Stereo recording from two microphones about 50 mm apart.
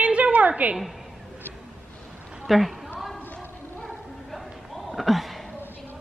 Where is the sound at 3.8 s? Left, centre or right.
Centre.